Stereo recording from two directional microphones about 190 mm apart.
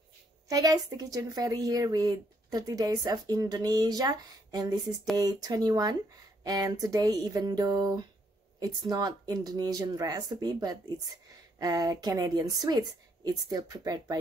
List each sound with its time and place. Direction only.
0.5 s a woman's voice: 20° right (ahead or behind)